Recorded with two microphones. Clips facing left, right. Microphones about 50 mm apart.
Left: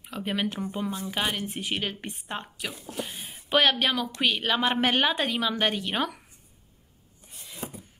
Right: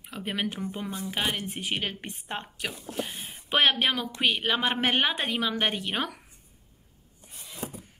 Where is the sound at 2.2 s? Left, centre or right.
Right.